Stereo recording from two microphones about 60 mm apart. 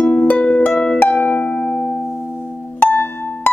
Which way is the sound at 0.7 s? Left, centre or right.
Centre.